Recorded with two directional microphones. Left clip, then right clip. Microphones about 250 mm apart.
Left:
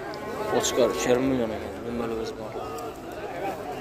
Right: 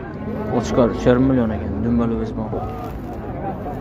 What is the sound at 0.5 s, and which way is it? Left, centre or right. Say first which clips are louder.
Speech: right 4 dB; centre.